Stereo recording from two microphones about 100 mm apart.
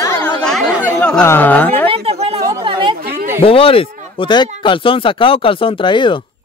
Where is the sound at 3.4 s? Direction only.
70° left (ahead or behind).